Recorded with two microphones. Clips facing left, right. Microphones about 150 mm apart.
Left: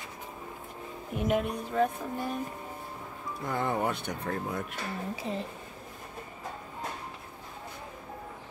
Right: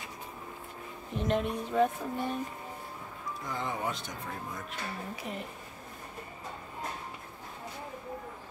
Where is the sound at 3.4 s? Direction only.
55° left (ahead or behind).